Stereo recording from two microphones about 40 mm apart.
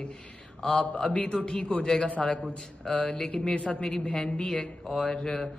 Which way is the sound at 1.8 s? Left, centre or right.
Centre.